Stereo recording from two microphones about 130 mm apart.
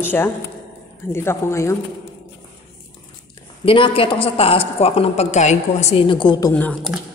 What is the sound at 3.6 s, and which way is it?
A woman's voice, 45° left (ahead or behind).